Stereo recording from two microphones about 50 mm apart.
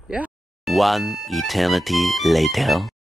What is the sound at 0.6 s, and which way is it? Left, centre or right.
Speech, centre.